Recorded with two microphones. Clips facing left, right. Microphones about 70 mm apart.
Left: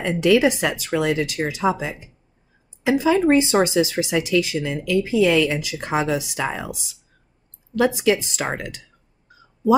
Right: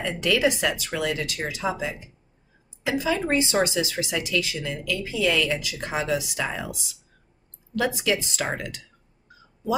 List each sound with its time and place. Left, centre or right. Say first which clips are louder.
0.0 s speech: left 6 dB; left
7.8 s speech: left 6 dB; left